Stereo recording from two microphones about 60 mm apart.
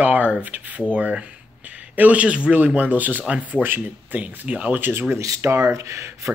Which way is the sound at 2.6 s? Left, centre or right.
Right.